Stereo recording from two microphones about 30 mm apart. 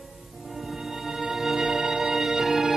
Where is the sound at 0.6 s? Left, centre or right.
Centre.